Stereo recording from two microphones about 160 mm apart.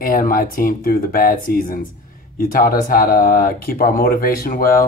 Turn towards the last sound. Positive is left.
turn(degrees=65)  # may be behind; listen again after turning